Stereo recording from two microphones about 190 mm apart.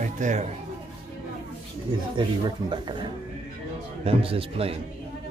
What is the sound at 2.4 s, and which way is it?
Speech, 25° right (ahead or behind).